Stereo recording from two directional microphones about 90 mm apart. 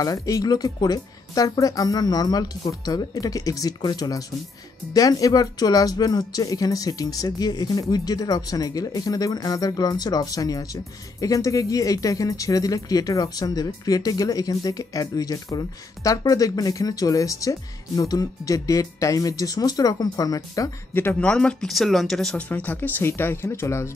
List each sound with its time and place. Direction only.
0.0 s speech: 40° left (ahead or behind)
20.9 s speech: 25° left (ahead or behind)
21.2 s speech: 10° left (ahead or behind)
22.5 s speech: 20° left (ahead or behind)